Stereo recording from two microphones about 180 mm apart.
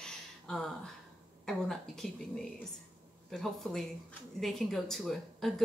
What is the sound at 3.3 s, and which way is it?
Speech, centre (ahead or behind).